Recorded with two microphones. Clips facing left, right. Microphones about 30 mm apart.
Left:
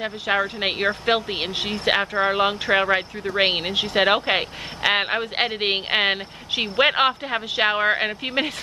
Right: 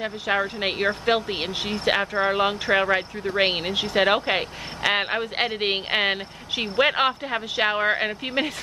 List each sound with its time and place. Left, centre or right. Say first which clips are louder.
0.0 s speech: left 2 dB; centre